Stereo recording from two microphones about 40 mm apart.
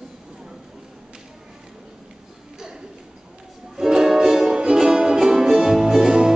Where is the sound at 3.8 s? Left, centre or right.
Centre.